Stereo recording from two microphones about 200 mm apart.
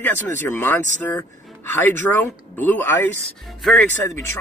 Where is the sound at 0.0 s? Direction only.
10° left (ahead or behind).